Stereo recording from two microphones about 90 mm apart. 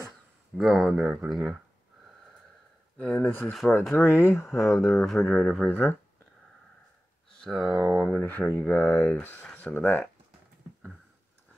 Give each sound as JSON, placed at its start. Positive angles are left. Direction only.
{"t": 0.6, "sound": "speech", "side_deg": 0}
{"t": 3.0, "sound": "speech", "side_deg": 20}
{"t": 4.9, "sound": "speech", "side_deg": 0}
{"t": 5.2, "sound": "speech", "side_deg": 15}
{"t": 7.3, "sound": "speech", "side_deg": 5}
{"t": 8.1, "sound": "speech", "side_deg": 15}